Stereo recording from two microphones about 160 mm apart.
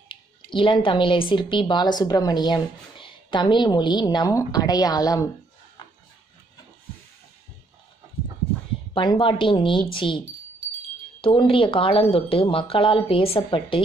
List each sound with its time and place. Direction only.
0.1 s speech: 30° left (ahead or behind)
8.9 s speech: 30° left (ahead or behind)